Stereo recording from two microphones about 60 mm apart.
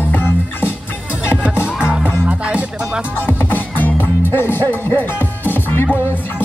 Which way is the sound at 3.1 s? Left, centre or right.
Left.